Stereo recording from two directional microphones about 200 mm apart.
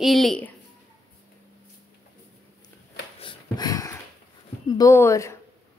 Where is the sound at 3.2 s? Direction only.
20° left (ahead or behind).